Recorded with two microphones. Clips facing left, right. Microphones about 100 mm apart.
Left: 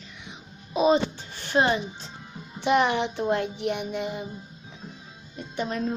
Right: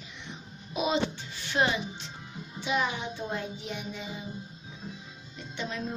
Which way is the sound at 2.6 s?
65° left (ahead or behind).